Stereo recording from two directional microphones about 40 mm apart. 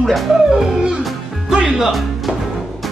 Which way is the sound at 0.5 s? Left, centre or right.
Centre.